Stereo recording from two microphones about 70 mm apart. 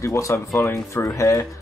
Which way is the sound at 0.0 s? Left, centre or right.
Left.